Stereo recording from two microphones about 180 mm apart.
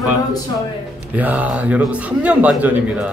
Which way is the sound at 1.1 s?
10° right (ahead or behind).